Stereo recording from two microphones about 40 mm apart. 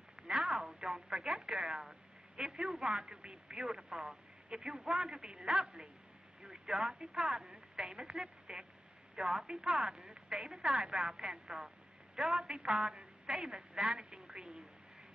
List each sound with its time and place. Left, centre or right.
0.1 s a sound: centre
0.7 s a woman's voice: centre
6.4 s radio: centre
6.8 s a woman's voice: centre
7.2 s speech: centre
7.7 s a woman's voice: centre
14.1 s telephone: centre